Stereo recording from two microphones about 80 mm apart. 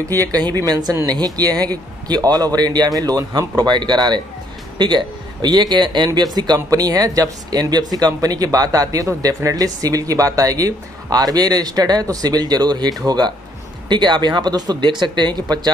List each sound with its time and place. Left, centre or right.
0.1 s a man's voice: right
13.8 s speech: right